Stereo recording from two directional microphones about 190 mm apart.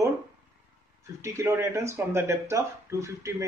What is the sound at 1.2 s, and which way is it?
Speech, 15° right (ahead or behind).